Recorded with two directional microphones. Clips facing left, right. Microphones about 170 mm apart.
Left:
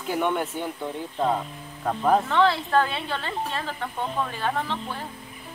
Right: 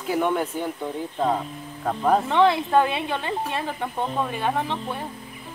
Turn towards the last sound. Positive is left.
turn(degrees=-15)  # may be behind; listen again after turning